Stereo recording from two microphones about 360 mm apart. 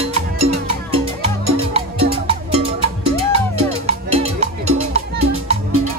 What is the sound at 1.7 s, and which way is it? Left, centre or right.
Music, centre.